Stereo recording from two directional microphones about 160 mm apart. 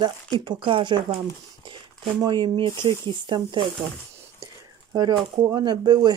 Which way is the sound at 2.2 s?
25° right (ahead or behind).